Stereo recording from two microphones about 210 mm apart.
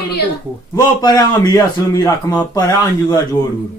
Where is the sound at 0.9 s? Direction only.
20° left (ahead or behind).